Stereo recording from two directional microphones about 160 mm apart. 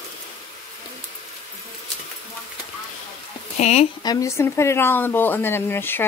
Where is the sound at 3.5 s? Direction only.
45° left (ahead or behind).